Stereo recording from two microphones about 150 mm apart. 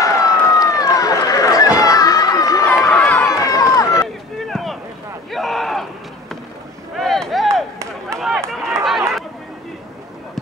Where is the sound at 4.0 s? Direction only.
Centre (ahead or behind).